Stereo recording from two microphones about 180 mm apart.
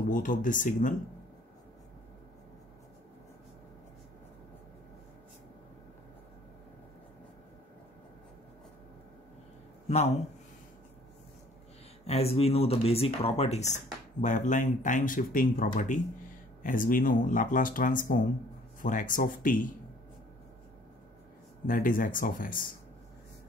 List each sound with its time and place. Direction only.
0.1 s speech: 50° left (ahead or behind)
9.8 s a man's voice: 35° left (ahead or behind)
12.1 s speech: 35° left (ahead or behind); by 19.7 s 50° left (ahead or behind)
21.6 s speech: 50° left (ahead or behind)